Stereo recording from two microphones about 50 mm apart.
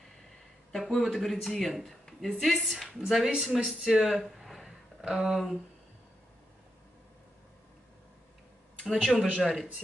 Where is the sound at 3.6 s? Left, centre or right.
Centre.